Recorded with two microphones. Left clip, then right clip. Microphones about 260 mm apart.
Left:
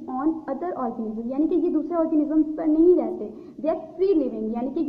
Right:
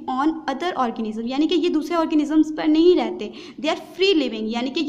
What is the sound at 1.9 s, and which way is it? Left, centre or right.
A woman's voice, right.